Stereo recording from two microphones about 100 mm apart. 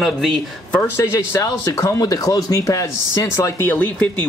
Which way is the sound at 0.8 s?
25° left (ahead or behind).